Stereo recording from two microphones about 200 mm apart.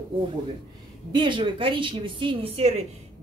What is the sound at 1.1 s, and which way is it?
A woman's voice, 25° right (ahead or behind).